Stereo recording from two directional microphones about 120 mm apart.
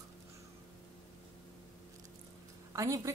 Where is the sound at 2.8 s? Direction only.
25° right (ahead or behind).